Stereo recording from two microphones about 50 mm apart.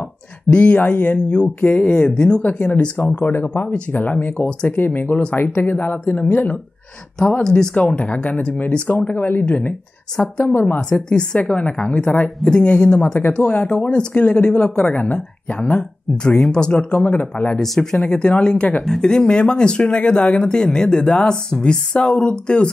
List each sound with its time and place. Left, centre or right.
0.5 s speech: left
2.4 s speech: left
7.4 s speech: centre
7.7 s speech: left
10.8 s speech: centre
16.2 s speech: centre
16.9 s speech: left
17.6 s speech: centre
18.0 s speech: left
18.8 s speech: centre